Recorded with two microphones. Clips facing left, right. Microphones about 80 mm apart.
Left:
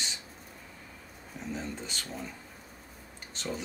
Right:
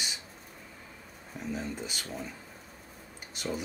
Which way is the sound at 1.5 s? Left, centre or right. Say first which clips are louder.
Right 2 dB; centre.